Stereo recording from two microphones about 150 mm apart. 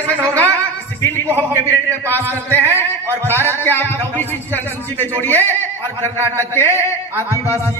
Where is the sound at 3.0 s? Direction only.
15° right (ahead or behind).